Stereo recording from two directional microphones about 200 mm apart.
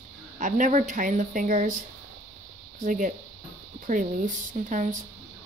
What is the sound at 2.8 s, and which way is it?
Speech, 40° right (ahead or behind).